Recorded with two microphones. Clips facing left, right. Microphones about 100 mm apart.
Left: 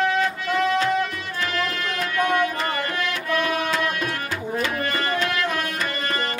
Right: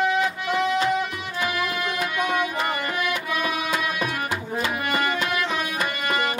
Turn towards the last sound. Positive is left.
turn(degrees=-15)  # may be behind; listen again after turning